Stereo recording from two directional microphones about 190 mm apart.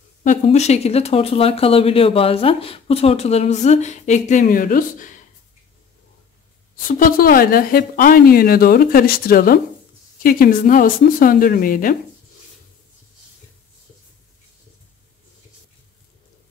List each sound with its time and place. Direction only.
0.2 s speech: 40° left (ahead or behind)
6.9 s speech: 50° left (ahead or behind)